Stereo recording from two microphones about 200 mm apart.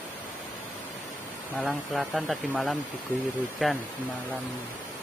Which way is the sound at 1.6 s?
Centre (ahead or behind).